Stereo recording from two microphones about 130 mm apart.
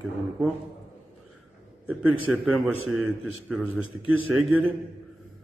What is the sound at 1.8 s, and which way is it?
A man's voice, 10° right (ahead or behind).